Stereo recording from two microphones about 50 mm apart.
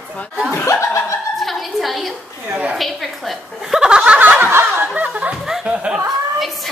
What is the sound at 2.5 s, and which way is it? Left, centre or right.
Speech, right.